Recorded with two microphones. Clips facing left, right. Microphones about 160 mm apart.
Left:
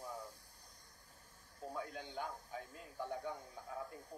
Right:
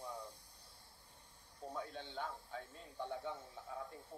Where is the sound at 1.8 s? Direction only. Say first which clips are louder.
Left 1 dB; 25° right (ahead or behind).